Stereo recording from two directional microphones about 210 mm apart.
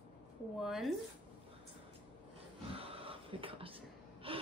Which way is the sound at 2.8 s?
25° right (ahead or behind).